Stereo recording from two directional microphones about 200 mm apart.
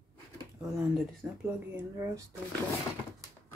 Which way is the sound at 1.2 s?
10° right (ahead or behind).